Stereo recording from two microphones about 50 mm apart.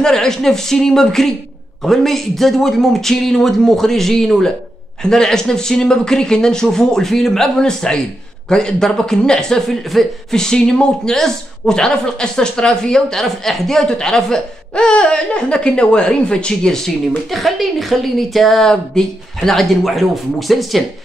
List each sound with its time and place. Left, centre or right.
0.0 s speech: centre
9.7 s speech: centre
10.3 s speech: centre
17.3 s speech: centre